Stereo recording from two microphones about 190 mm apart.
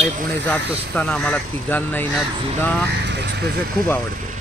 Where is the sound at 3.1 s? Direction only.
60° right (ahead or behind).